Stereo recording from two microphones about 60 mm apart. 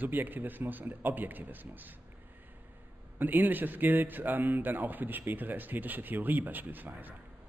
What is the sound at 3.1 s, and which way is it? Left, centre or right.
Speech, right.